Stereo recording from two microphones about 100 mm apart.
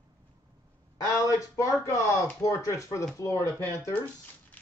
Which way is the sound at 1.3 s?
30° left (ahead or behind).